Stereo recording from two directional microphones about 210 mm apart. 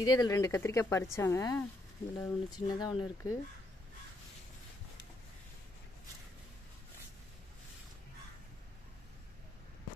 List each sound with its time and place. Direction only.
0.0 s a woman's voice: 15° left (ahead or behind)